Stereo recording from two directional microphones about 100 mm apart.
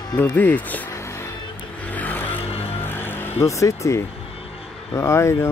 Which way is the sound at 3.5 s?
30° left (ahead or behind).